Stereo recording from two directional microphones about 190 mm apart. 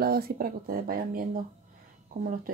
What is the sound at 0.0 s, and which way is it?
Speech, 55° right (ahead or behind).